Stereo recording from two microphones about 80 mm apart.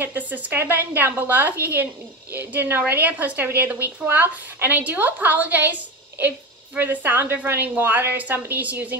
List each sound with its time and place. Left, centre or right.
0.0 s a woman's voice: right